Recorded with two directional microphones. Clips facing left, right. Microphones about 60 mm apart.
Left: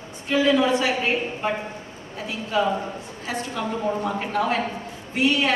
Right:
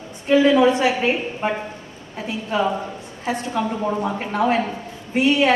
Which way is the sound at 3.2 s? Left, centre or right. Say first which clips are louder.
Right 5 dB; right.